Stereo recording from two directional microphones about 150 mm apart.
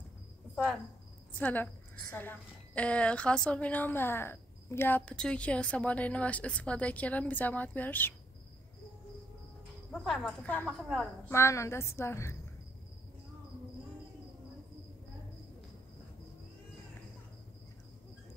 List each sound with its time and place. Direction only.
1.4 s a woman's voice: 10° left (ahead or behind)
10.0 s speech: 5° left (ahead or behind)
11.2 s a woman's voice: 20° left (ahead or behind)